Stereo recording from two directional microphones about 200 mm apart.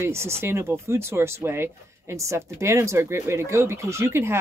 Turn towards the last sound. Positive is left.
turn(degrees=-15)  # may be behind; listen again after turning